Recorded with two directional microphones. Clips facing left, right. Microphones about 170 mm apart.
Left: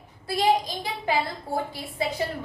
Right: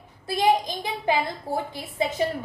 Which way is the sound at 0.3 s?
20° right (ahead or behind).